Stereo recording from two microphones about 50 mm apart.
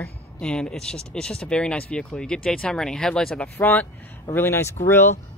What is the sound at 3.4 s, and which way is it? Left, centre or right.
Speech, left.